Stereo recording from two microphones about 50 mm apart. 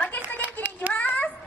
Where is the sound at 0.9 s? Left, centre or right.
Left.